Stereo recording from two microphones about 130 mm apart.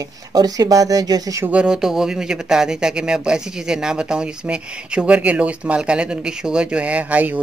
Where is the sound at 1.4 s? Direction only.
10° right (ahead or behind).